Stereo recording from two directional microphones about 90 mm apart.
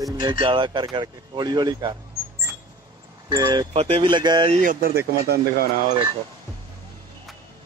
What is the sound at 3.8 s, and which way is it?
Speech, 85° right.